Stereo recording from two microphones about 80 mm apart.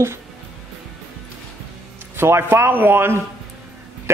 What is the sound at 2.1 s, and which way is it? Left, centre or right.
A man's voice, right.